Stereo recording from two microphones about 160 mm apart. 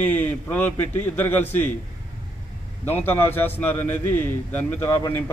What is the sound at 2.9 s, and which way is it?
A man's voice, 15° left (ahead or behind).